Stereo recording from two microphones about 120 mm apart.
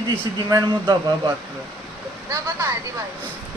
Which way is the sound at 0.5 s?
35° right (ahead or behind).